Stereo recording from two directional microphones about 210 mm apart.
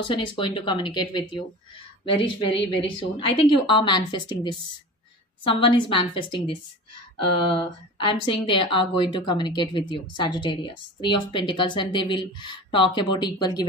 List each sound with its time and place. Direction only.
0.1 s speech: 25° left (ahead or behind)